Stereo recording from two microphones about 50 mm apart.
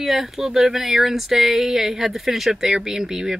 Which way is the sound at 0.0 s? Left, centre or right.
Centre.